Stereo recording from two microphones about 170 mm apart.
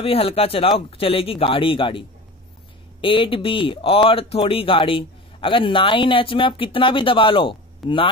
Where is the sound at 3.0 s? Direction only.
30° left (ahead or behind).